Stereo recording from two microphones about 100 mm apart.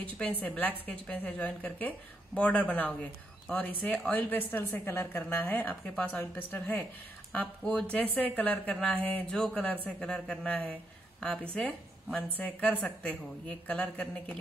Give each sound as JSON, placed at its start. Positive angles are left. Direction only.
{"t": 0.2, "sound": "a woman's voice", "side_deg": 15}
{"t": 4.1, "sound": "a woman's voice", "side_deg": 15}
{"t": 12.4, "sound": "a woman's voice", "side_deg": 15}
{"t": 13.2, "sound": "a woman's voice", "side_deg": 5}